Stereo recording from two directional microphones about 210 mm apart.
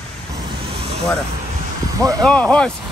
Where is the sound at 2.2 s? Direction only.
5° left (ahead or behind).